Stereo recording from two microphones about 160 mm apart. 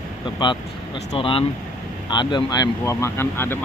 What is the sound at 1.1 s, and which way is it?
Speech, 35° left (ahead or behind).